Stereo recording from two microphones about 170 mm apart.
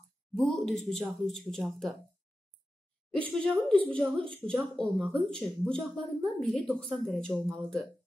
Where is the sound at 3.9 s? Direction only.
30° right (ahead or behind).